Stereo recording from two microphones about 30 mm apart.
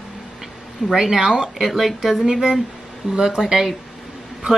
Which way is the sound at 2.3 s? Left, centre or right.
Right.